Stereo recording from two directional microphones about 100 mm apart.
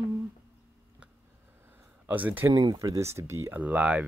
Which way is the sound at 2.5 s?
40° right (ahead or behind).